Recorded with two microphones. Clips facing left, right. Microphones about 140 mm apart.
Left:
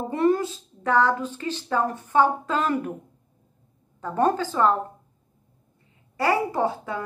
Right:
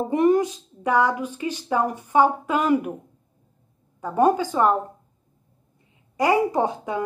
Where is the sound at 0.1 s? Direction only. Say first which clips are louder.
Right 3 dB; 15° right (ahead or behind).